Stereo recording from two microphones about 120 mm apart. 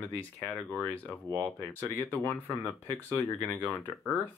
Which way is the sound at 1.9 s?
20° left (ahead or behind).